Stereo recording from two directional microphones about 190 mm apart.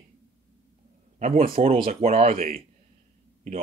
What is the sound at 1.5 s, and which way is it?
Speech, 30° right (ahead or behind).